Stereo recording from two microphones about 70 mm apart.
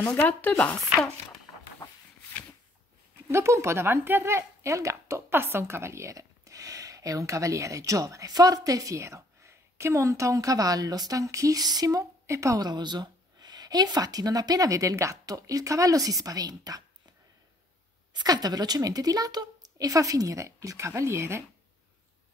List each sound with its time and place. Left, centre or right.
0.0 s speech: centre
3.3 s speech: right
11.6 s speech: right
12.6 s speech: right
18.1 s speech: right